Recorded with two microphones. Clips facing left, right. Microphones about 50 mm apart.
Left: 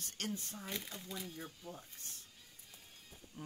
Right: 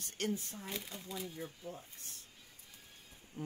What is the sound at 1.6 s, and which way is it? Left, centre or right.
Speech, right.